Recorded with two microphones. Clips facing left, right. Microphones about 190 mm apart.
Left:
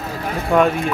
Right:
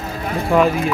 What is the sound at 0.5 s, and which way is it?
Speech, centre (ahead or behind).